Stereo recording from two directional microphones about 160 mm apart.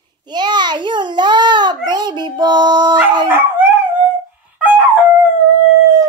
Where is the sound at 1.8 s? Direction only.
25° right (ahead or behind).